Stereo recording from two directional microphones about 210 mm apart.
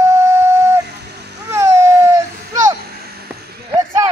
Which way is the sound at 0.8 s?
50° right (ahead or behind).